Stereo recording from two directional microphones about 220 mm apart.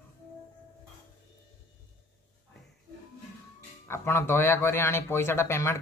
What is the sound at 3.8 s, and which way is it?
A man's voice, 10° left (ahead or behind).